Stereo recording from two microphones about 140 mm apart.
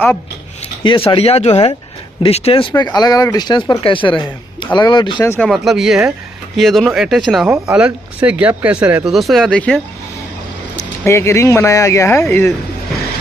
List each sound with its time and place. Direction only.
0.8 s speech: 40° left (ahead or behind)
1.5 s speech: 30° left (ahead or behind)
2.2 s speech: 45° left (ahead or behind)
2.8 s speech: 30° left (ahead or behind)
5.2 s speech: 15° left (ahead or behind)
5.5 s speech: centre (ahead or behind)
11.1 s speech: 20° left (ahead or behind)